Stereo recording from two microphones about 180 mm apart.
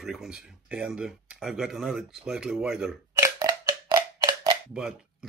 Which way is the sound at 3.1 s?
15° right (ahead or behind).